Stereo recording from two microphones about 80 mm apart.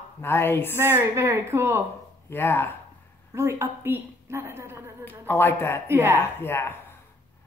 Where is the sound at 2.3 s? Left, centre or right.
Left.